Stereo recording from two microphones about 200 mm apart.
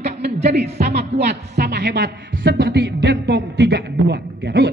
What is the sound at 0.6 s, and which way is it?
A man's voice, 55° right (ahead or behind).